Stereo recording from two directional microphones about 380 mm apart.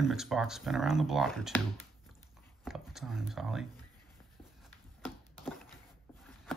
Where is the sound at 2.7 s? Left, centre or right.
Centre.